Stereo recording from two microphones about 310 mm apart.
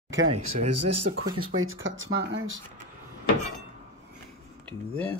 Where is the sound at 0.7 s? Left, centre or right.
Right.